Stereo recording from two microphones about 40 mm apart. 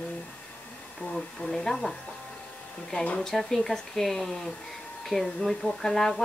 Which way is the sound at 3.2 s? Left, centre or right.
Centre.